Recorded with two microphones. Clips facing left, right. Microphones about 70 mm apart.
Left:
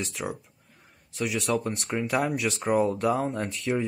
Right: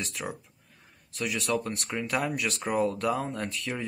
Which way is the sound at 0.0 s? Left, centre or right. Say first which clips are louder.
Left 3 dB; centre.